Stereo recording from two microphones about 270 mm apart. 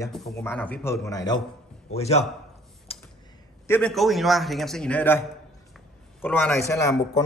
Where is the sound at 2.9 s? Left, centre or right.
Left.